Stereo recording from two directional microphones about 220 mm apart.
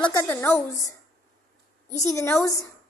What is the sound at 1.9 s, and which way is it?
Speech, 15° left (ahead or behind).